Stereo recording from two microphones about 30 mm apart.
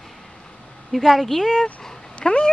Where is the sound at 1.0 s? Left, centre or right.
Centre.